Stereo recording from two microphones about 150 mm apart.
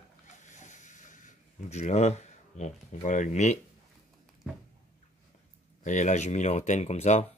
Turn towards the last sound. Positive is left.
turn(degrees=50)  # may be behind; listen again after turning